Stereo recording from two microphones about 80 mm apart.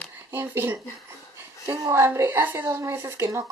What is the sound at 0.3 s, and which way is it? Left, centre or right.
A woman's voice, right.